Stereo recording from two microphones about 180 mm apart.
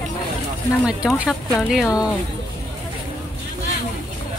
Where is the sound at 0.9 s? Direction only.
5° right (ahead or behind).